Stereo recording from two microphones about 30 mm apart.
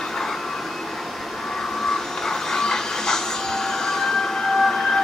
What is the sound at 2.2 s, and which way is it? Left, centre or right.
Train, centre.